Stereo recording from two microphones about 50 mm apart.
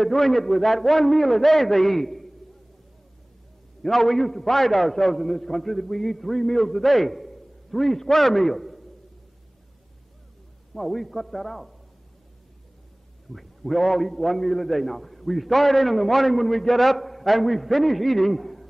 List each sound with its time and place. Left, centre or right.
0.0 s a man's voice: centre
3.8 s a man's voice: centre
10.7 s a man's voice: centre
13.3 s a man's voice: centre